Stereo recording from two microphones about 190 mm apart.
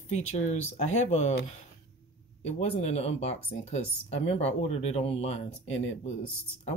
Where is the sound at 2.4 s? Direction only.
30° left (ahead or behind).